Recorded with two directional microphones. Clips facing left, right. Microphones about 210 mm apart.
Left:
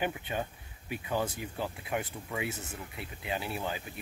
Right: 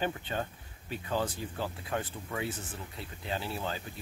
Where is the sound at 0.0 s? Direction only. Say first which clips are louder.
Even; 15° left (ahead or behind).